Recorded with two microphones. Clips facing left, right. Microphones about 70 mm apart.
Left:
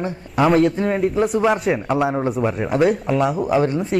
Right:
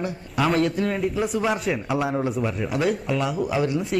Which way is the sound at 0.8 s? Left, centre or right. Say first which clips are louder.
Left 4 dB; left.